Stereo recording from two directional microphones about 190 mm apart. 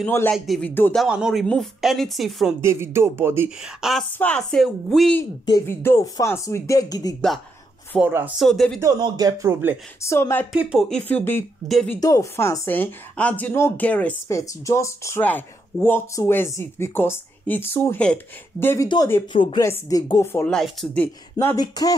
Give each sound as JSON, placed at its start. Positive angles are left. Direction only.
{"t": 0.0, "sound": "speech", "side_deg": 10}
{"t": 1.0, "sound": "speech", "side_deg": -5}
{"t": 2.6, "sound": "speech", "side_deg": -15}
{"t": 5.4, "sound": "speech", "side_deg": 20}
{"t": 8.0, "sound": "speech", "side_deg": -10}
{"t": 8.5, "sound": "speech", "side_deg": 0}
{"t": 8.8, "sound": "speech", "side_deg": -20}
{"t": 10.0, "sound": "speech", "side_deg": 15}
{"t": 10.5, "sound": "speech", "side_deg": -5}
{"t": 12.0, "sound": "speech", "side_deg": 15}
{"t": 19.3, "sound": "speech", "side_deg": 25}